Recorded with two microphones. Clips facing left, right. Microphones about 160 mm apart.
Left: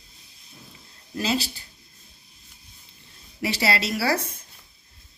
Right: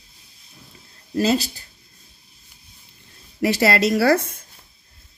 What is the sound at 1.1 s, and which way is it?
Speech, 40° right (ahead or behind).